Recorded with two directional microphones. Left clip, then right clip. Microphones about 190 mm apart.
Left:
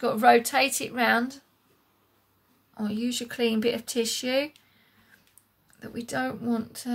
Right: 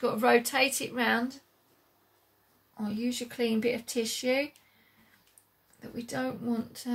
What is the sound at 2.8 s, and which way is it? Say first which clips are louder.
Speech: left 3 dB; 40° left (ahead or behind).